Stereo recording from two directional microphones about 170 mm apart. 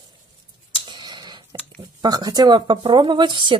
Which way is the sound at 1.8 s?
25° right (ahead or behind).